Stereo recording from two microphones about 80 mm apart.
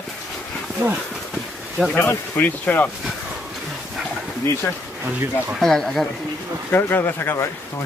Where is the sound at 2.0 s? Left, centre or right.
Left.